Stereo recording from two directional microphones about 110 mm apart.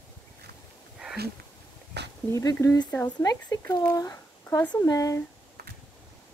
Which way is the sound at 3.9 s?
35° left (ahead or behind).